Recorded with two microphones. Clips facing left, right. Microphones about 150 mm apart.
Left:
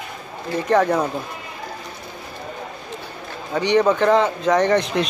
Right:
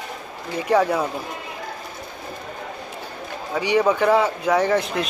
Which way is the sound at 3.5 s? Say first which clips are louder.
Left 2 dB; 10° right (ahead or behind).